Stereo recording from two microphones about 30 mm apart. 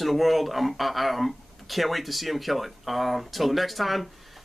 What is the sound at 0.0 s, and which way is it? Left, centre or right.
Speech, centre.